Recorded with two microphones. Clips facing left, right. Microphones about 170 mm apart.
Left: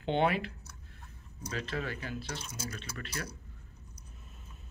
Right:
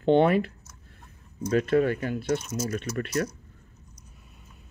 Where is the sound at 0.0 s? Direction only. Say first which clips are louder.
Right 9 dB; 45° right (ahead or behind).